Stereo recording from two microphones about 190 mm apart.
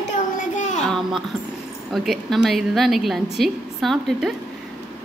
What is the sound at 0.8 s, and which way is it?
A woman's voice, 5° left (ahead or behind).